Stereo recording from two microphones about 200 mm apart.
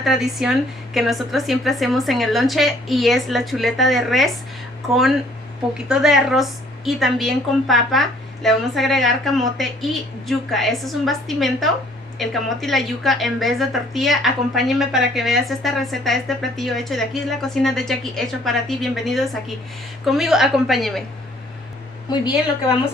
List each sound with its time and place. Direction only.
0.0 s a woman's voice: centre (ahead or behind)